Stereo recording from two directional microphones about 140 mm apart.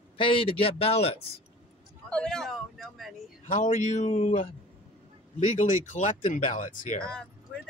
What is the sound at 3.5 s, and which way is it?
Speech, 65° left (ahead or behind).